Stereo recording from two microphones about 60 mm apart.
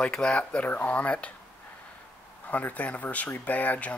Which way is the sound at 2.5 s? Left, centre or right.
Left.